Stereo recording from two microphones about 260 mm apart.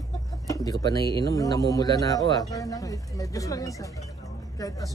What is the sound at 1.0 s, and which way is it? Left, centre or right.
Speech, centre.